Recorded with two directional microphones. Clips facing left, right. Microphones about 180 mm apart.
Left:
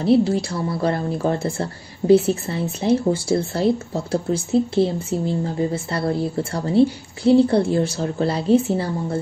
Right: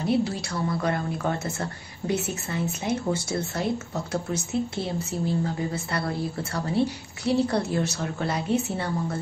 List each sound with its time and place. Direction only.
0.0 s speech: 30° left (ahead or behind)